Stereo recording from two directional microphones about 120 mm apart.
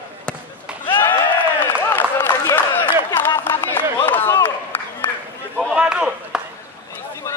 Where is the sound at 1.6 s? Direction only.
15° left (ahead or behind).